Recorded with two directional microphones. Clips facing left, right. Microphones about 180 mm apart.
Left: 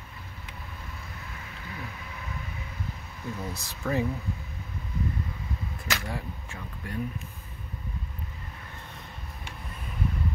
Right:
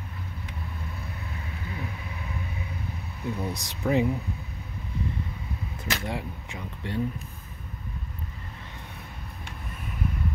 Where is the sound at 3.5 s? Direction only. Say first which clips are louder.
Right 4 dB; 15° right (ahead or behind).